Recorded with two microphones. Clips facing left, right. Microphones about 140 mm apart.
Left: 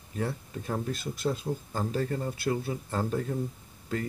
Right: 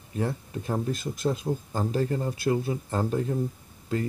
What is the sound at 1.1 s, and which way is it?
Speech, 20° right (ahead or behind).